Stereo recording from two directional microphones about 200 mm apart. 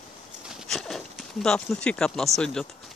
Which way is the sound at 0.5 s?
Centre (ahead or behind).